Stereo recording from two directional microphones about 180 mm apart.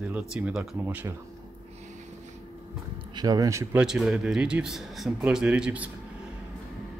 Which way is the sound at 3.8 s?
5° right (ahead or behind).